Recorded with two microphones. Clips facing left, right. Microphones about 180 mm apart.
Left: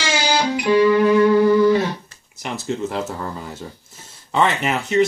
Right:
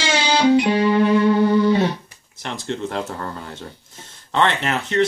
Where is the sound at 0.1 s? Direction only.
30° right (ahead or behind).